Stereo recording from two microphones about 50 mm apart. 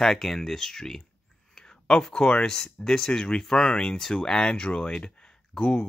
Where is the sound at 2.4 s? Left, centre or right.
Centre.